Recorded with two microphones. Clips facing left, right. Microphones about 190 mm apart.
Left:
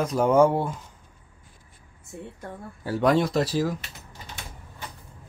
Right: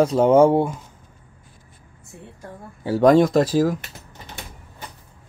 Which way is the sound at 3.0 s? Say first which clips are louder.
Right 7 dB; 45° right (ahead or behind).